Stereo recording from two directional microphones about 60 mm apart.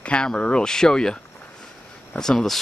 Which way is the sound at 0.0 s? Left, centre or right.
Centre.